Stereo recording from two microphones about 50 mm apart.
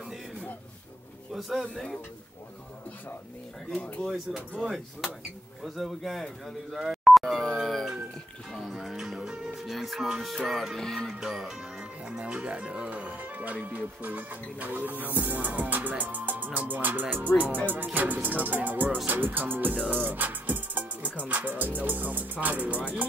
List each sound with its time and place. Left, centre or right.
1.6 s speech: centre
4.1 s speech: centre
6.8 s dial tone: centre
7.5 s speech: centre
11.1 s music: centre
12.0 s speech: centre; by 19.8 s right
19.9 s music: right
21.2 s speech: right